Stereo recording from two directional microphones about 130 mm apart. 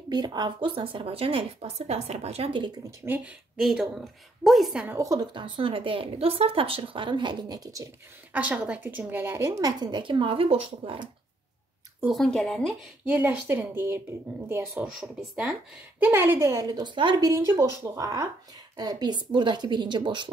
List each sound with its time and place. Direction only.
0.1 s speech: 35° right (ahead or behind); by 2.6 s 50° right (ahead or behind)
3.5 s a woman's voice: 5° right (ahead or behind)
4.8 s a woman's voice: 25° right (ahead or behind)
5.3 s speech: 40° right (ahead or behind)
8.3 s a woman's voice: 10° right (ahead or behind); by 11.1 s 45° right (ahead or behind)
12.1 s a woman's voice: centre (ahead or behind)
13.0 s a woman's voice: 15° right (ahead or behind)
16.0 s a woman's voice: 20° right (ahead or behind); by 17.3 s 35° right (ahead or behind)
17.3 s a woman's voice: 25° right (ahead or behind)